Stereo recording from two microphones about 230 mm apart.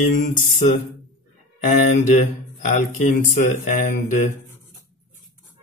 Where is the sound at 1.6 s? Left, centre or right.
Left.